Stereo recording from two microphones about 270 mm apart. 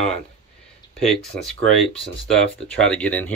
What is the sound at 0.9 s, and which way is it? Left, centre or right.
Speech, centre.